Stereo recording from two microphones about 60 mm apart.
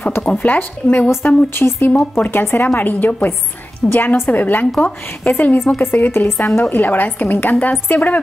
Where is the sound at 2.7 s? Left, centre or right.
Left.